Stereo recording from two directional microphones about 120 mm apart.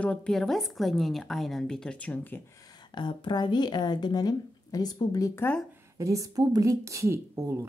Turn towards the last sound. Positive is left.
turn(degrees=-20)  # may be behind; listen again after turning